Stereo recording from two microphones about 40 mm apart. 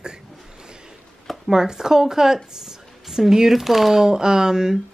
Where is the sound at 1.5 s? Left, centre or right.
Centre.